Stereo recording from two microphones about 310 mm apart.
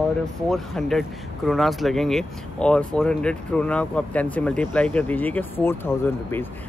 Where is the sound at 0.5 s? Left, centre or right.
Centre.